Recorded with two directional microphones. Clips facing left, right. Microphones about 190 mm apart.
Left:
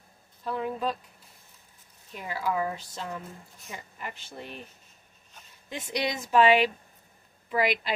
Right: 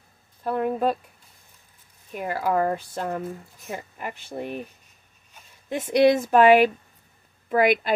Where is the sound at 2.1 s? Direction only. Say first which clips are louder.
Right 6 dB; 55° right (ahead or behind).